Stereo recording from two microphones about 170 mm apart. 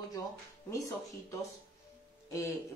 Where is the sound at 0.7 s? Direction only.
20° left (ahead or behind).